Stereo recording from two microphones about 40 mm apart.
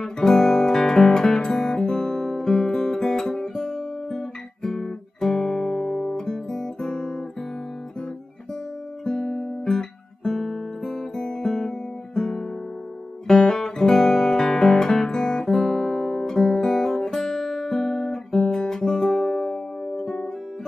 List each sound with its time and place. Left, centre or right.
0.0 s guitar: centre
9.0 s guitar: centre